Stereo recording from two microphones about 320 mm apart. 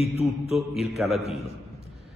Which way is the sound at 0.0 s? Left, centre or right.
Centre.